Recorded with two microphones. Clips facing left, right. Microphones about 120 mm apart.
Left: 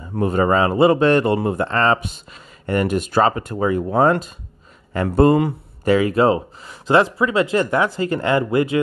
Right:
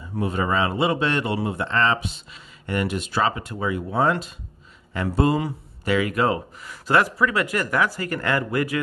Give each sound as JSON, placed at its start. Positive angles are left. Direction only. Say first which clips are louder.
{"t": 0.1, "sound": "speech", "louder": "left 6 dB", "side_deg": 45}
{"t": 5.9, "sound": "speech", "louder": "left 6 dB", "side_deg": 30}